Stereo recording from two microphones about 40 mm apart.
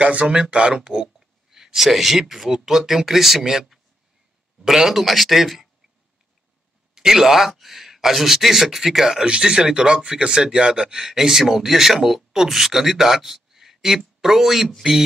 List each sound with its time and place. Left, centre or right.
0.0 s speech: right
1.0 s speech: centre
7.0 s speech: centre
9.2 s speech: centre